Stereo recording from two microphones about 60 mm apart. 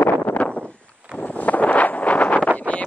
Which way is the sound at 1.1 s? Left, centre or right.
Left.